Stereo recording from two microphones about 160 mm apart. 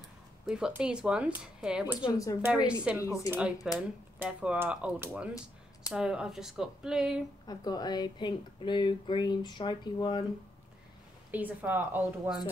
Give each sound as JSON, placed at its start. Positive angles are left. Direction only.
{"t": 0.5, "sound": "speech", "side_deg": -5}
{"t": 2.0, "sound": "speech", "side_deg": 20}
{"t": 2.4, "sound": "speech", "side_deg": -10}
{"t": 7.4, "sound": "speech", "side_deg": 25}
{"t": 11.3, "sound": "speech", "side_deg": -10}